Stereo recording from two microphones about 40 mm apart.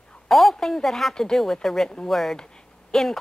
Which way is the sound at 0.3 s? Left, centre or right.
Centre.